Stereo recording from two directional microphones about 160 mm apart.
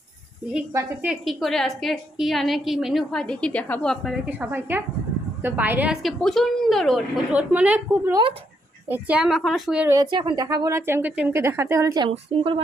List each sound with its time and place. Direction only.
1.0 s a woman's voice: centre (ahead or behind)
4.3 s a woman's voice: 10° right (ahead or behind)
9.8 s a woman's voice: 20° right (ahead or behind)
12.1 s speech: 35° right (ahead or behind)